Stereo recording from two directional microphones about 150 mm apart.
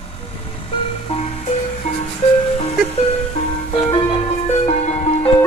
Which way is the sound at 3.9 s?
45° left (ahead or behind).